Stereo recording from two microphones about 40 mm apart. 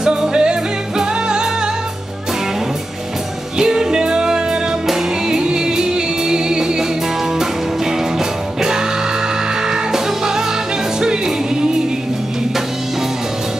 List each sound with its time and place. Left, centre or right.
0.0 s music: centre
3.5 s music: centre
9.7 s music: centre